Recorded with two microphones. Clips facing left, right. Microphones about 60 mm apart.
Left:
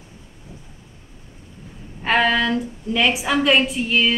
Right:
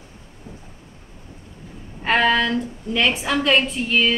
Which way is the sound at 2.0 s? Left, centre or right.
Centre.